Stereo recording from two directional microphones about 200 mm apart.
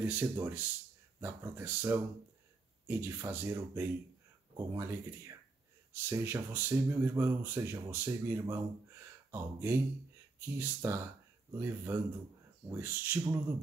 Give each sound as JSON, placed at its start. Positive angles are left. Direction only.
{"t": 0.0, "sound": "speech", "side_deg": -10}